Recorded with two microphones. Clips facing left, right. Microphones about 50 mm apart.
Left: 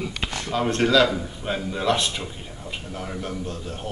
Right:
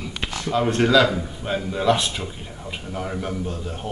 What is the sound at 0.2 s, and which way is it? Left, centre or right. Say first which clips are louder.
A man's voice: right 4 dB; centre.